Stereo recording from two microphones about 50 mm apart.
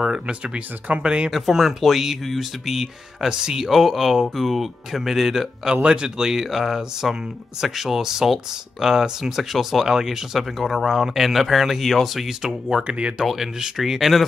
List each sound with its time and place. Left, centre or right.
0.0 s speech: centre
1.3 s speech: centre